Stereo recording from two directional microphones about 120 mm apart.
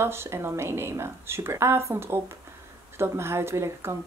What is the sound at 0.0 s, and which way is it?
Speech, 20° right (ahead or behind).